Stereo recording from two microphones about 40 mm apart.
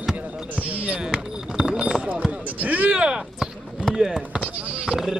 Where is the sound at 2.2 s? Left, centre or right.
Right.